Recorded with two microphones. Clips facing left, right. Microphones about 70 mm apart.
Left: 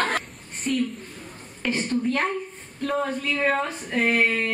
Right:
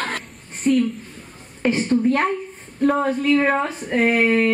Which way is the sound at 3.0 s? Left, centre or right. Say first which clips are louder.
Right 8 dB; centre.